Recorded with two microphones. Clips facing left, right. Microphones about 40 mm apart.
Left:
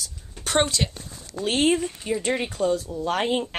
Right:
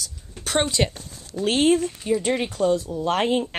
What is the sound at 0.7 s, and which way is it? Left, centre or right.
Speech, centre.